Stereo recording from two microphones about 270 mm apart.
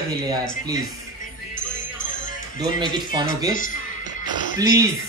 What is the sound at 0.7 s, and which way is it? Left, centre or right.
Music, left.